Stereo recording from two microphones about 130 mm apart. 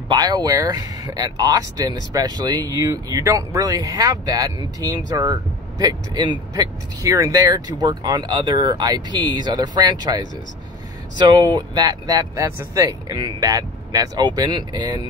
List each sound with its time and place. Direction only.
0.1 s speech: 30° right (ahead or behind)